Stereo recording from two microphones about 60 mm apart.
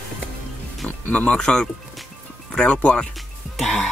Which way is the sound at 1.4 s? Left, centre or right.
Centre.